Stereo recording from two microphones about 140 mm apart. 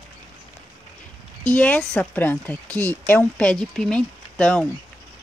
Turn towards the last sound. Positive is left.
turn(degrees=5)  # may be behind; listen again after turning